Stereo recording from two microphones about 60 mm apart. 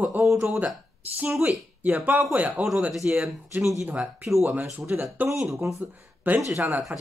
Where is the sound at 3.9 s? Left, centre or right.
Right.